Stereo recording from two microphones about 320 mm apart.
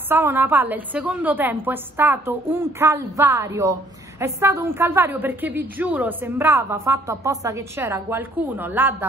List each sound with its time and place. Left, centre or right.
0.1 s a woman's voice: centre